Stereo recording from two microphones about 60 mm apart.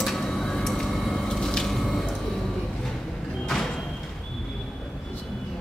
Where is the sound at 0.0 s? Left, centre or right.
Centre.